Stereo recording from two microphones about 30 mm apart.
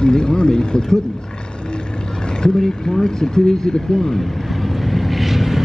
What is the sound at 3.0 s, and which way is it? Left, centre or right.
Speech, centre.